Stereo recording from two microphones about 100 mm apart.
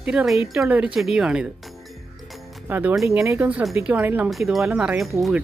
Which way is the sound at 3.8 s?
15° right (ahead or behind).